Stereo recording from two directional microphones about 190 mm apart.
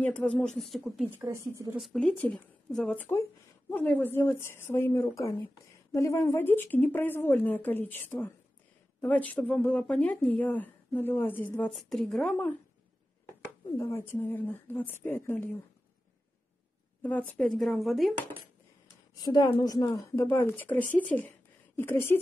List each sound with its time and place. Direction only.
0.0 s speech: 5° left (ahead or behind)
1.2 s a woman's voice: 15° right (ahead or behind)
1.8 s speech: centre (ahead or behind)
17.0 s speech: 10° left (ahead or behind)
19.2 s speech: 20° left (ahead or behind)